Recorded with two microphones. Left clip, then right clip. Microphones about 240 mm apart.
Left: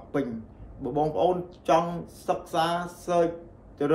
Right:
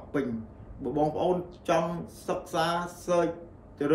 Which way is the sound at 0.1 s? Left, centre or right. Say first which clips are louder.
Left 1 dB; centre.